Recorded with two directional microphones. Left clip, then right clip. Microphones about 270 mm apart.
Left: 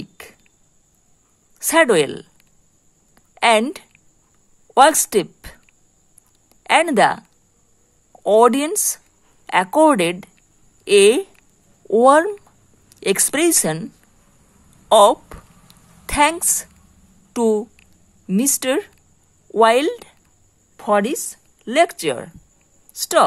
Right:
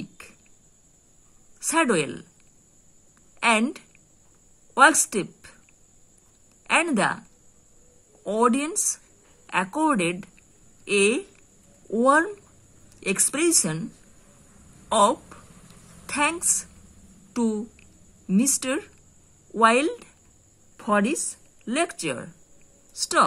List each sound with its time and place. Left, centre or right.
1.6 s a woman's voice: left
3.3 s a woman's voice: left
6.6 s a woman's voice: left
14.9 s a sound: left
18.3 s a woman's voice: left